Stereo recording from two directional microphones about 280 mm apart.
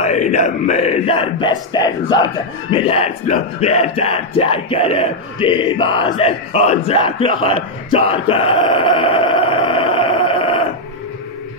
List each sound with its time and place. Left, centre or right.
0.0 s speech: left